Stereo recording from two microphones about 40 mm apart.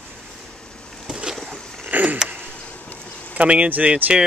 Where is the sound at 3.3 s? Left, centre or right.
Right.